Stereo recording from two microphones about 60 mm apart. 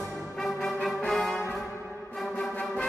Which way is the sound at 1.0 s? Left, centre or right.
Centre.